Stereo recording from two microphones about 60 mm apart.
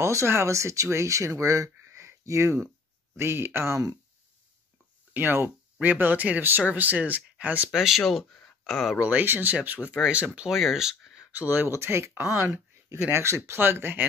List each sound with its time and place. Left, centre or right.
0.0 s speech: right
5.1 s speech: right
7.7 s speech: centre
9.0 s speech: right
10.5 s speech: centre
11.3 s speech: right
13.6 s speech: right